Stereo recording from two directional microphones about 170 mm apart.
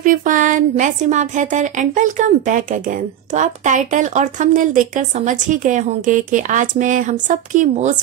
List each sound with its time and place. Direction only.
0.0 s a woman's voice: 50° right (ahead or behind)